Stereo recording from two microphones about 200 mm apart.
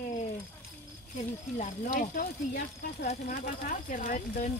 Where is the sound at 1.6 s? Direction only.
40° left (ahead or behind).